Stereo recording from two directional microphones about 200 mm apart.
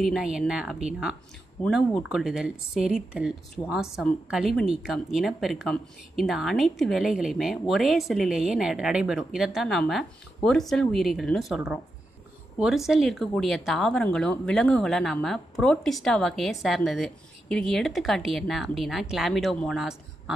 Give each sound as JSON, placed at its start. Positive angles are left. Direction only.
{"t": 0.0, "sound": "a woman's voice", "side_deg": 0}